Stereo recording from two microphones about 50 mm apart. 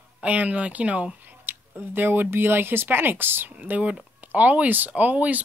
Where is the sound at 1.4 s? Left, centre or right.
Right.